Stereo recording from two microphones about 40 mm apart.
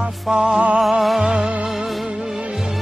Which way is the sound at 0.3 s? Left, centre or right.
Right.